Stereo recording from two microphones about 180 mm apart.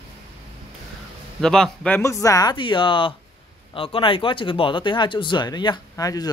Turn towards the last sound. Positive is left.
turn(degrees=20)  # may be behind; listen again after turning